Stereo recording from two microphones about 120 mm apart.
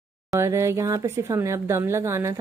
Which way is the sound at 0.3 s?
25° right (ahead or behind).